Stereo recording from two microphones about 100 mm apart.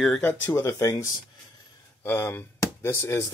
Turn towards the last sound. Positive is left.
turn(degrees=25)  # may be behind; listen again after turning